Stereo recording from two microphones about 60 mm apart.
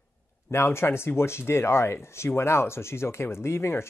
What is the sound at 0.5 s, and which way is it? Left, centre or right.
Speech, left.